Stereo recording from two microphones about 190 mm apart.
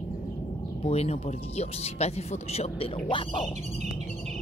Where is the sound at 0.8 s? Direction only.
35° left (ahead or behind).